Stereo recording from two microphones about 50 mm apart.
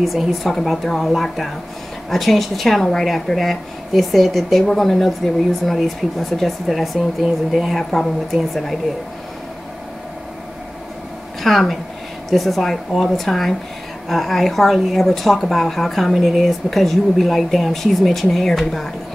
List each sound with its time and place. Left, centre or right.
0.0 s speech: centre
11.4 s speech: centre